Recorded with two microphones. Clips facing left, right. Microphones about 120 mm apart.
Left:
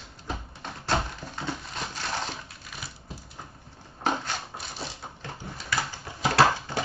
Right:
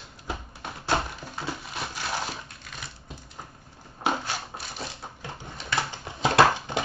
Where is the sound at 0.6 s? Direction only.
10° right (ahead or behind).